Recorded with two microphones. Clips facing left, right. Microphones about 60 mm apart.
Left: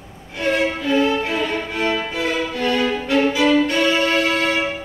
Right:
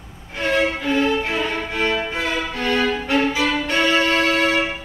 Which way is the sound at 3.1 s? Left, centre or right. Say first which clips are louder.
Left 3 dB; right.